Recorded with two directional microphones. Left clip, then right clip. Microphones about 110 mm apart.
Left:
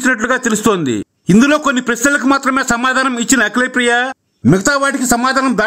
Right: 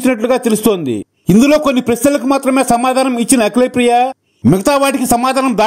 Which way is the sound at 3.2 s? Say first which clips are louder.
Right 1 dB; 25° right (ahead or behind).